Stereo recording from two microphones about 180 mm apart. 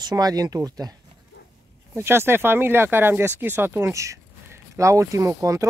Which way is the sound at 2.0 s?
15° right (ahead or behind).